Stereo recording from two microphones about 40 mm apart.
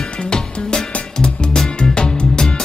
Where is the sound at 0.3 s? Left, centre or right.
Centre.